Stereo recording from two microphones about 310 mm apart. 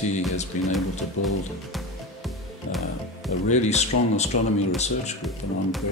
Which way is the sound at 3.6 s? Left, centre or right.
Left.